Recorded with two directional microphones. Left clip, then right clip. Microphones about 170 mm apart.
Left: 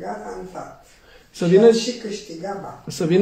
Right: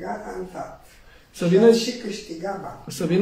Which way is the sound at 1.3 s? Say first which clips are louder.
Left 2 dB; 30° left (ahead or behind).